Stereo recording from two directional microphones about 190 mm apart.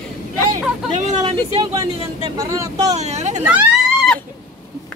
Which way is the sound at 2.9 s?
35° right (ahead or behind).